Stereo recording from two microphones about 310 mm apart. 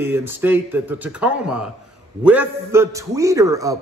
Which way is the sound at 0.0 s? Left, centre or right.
Centre.